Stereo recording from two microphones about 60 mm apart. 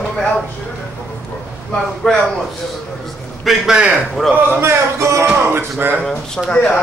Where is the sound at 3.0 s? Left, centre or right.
Centre.